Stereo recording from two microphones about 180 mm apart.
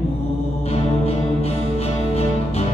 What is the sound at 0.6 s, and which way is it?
Music, 35° left (ahead or behind).